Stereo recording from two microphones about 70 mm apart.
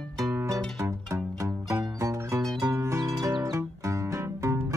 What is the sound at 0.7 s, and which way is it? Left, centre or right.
Music, right.